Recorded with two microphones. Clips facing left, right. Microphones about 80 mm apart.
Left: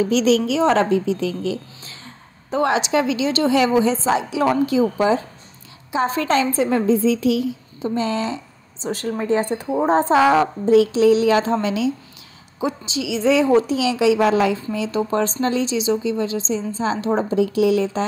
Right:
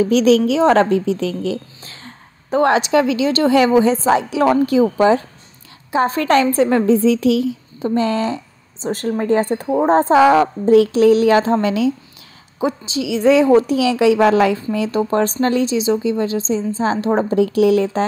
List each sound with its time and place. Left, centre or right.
0.1 s a woman's voice: right
7.9 s a woman's voice: right
12.5 s a woman's voice: right
15.0 s a woman's voice: right
17.3 s a woman's voice: right